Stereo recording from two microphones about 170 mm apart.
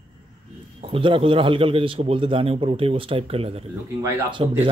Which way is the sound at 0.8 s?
30° right (ahead or behind).